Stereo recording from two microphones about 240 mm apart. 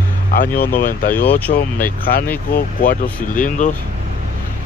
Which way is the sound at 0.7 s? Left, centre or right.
Left.